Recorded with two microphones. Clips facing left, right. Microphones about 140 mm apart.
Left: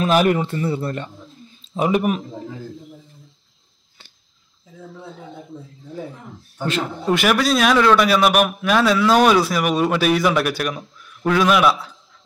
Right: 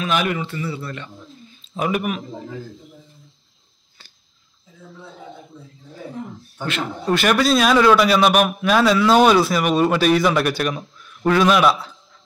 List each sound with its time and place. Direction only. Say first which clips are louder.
0.0 s speech: left 5 dB; 40° left (ahead or behind)
1.8 s speech: left 4 dB; 25° left (ahead or behind)
7.1 s a man's voice: right 1 dB; 10° left (ahead or behind)